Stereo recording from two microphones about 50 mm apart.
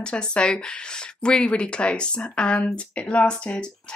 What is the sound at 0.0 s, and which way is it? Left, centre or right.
Speech, left.